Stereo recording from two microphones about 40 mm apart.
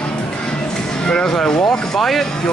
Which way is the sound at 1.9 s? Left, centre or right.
Centre.